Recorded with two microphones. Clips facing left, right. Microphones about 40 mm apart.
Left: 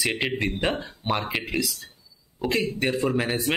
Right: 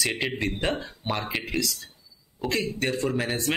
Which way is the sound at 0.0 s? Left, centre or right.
Centre.